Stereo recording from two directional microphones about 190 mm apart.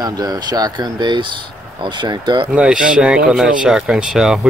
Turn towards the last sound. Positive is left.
turn(degrees=-5)  # may be behind; listen again after turning